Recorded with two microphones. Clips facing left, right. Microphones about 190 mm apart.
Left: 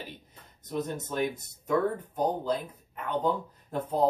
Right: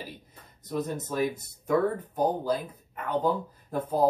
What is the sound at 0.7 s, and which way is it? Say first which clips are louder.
Speech: right 2 dB; 5° right (ahead or behind).